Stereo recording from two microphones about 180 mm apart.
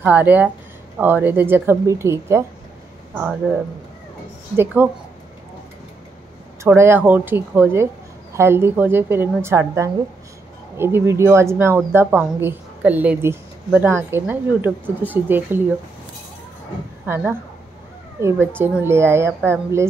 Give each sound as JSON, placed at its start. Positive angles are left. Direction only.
{"t": 0.0, "sound": "speech", "side_deg": -10}
{"t": 4.8, "sound": "speech", "side_deg": -10}
{"t": 6.6, "sound": "speech", "side_deg": -15}
{"t": 17.0, "sound": "speech", "side_deg": -10}